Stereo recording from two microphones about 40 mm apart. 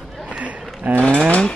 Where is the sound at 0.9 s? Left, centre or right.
Right.